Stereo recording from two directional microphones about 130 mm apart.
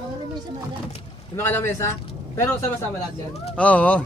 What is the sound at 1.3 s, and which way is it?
Speech, 20° left (ahead or behind).